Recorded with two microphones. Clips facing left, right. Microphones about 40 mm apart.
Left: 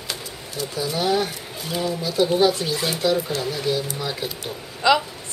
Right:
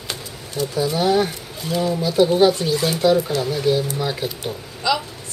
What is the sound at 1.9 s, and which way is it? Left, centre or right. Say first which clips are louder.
Speech: right 4 dB; centre.